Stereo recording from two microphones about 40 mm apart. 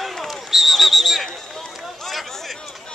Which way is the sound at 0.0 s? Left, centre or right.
Centre.